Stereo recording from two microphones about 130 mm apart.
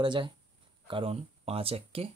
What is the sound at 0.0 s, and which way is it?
Speech, 35° right (ahead or behind).